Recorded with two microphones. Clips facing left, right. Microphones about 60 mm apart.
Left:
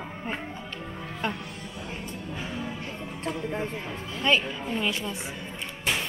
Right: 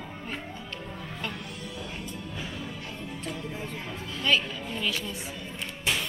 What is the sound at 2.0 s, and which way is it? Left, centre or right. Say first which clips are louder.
Music: left 2 dB; left.